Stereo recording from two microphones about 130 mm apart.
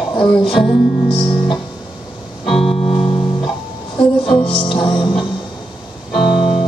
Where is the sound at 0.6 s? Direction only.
Centre (ahead or behind).